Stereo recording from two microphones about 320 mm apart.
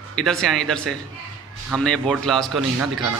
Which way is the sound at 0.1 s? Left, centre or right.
Centre.